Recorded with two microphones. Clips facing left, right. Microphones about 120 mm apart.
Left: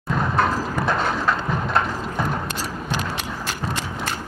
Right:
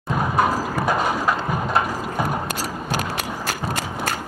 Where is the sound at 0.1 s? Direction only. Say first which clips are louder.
Right 1 dB; 10° right (ahead or behind).